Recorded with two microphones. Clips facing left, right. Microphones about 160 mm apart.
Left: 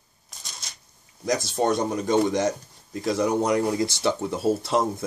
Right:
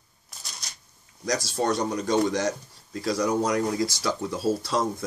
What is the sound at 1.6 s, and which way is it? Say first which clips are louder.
Speech: left 2 dB; 20° left (ahead or behind).